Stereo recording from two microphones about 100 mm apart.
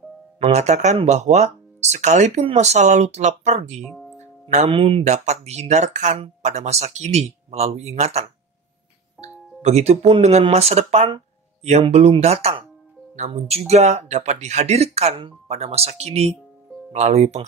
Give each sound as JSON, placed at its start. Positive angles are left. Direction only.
{"t": 0.6, "sound": "speech", "side_deg": -90}
{"t": 4.6, "sound": "speech", "side_deg": -70}